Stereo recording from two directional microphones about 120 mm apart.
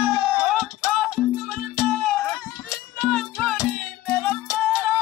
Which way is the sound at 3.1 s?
15° left (ahead or behind).